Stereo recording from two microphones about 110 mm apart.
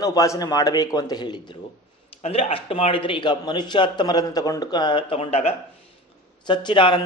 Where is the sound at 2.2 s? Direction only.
65° left (ahead or behind); by 5.1 s 45° left (ahead or behind).